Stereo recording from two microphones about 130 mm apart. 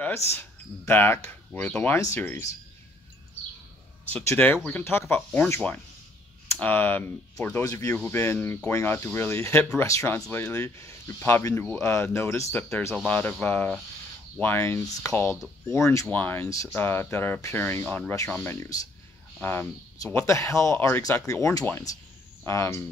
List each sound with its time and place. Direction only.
0.0 s speech: 20° left (ahead or behind)
2.0 s speech: 25° left (ahead or behind)
4.3 s speech: 15° left (ahead or behind)
7.9 s speech: 15° left (ahead or behind)
16.1 s speech: 15° left (ahead or behind)